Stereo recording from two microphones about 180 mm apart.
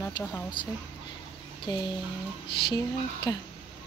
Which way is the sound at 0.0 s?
10° left (ahead or behind).